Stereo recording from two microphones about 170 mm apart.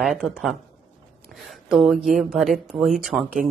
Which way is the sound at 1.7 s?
Centre (ahead or behind).